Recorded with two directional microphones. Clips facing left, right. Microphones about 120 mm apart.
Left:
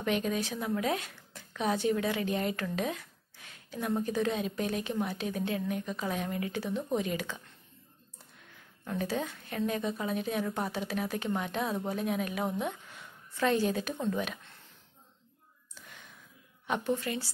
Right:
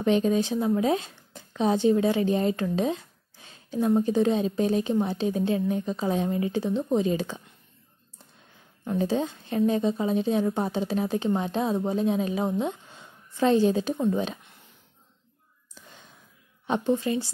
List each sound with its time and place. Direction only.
0.0 s a woman's voice: 30° right (ahead or behind)
8.5 s a woman's voice: 25° right (ahead or behind)
16.6 s a woman's voice: 25° right (ahead or behind)